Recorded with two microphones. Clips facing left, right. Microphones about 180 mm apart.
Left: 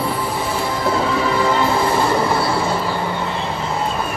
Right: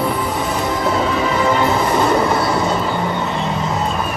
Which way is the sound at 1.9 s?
20° right (ahead or behind).